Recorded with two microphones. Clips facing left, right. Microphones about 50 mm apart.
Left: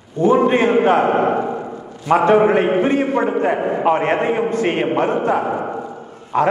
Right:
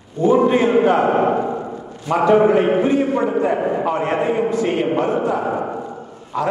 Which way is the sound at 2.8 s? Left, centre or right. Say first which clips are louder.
Even; left.